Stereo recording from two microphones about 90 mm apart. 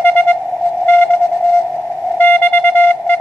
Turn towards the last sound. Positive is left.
turn(degrees=20)  # may be behind; listen again after turning